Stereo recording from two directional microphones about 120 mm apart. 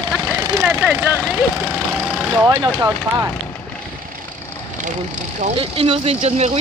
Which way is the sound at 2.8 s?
30° right (ahead or behind).